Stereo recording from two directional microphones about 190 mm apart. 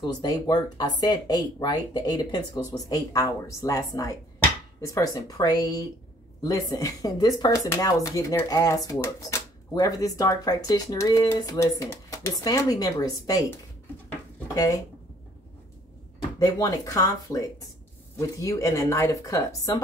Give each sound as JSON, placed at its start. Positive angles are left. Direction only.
{"t": 0.0, "sound": "speech", "side_deg": 20}
{"t": 16.3, "sound": "speech", "side_deg": 20}